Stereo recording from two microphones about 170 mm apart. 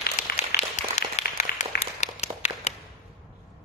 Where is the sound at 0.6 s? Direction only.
45° left (ahead or behind).